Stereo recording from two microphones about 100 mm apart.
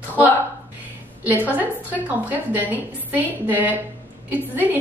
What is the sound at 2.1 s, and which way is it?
A woman's voice, 15° right (ahead or behind).